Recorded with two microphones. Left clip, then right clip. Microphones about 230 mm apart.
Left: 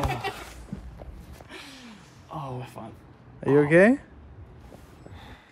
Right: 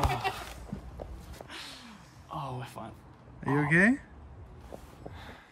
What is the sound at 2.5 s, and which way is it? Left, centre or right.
Speech, centre.